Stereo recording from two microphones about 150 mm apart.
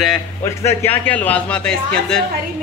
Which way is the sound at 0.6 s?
15° left (ahead or behind).